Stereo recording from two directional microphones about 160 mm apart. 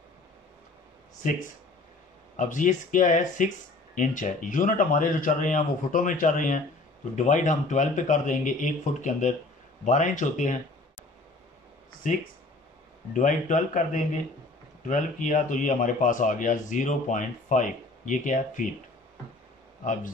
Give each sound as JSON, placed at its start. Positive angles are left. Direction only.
{"t": 2.3, "sound": "speech", "side_deg": 50}
{"t": 13.1, "sound": "speech", "side_deg": 50}
{"t": 19.8, "sound": "speech", "side_deg": 50}